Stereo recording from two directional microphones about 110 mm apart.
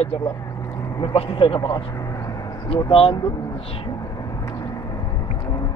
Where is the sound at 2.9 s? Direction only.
55° left (ahead or behind).